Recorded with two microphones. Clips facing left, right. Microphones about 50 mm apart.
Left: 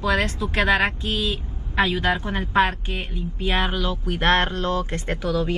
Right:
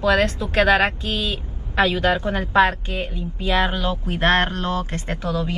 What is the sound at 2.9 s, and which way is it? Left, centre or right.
Speech, left.